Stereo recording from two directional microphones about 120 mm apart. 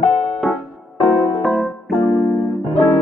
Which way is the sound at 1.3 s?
Centre (ahead or behind).